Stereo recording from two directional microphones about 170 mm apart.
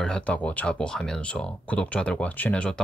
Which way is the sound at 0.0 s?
5° left (ahead or behind).